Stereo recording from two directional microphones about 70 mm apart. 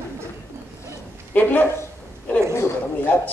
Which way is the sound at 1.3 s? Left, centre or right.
Left.